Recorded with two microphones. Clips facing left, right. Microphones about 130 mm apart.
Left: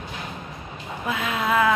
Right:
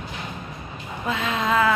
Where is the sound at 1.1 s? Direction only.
10° left (ahead or behind).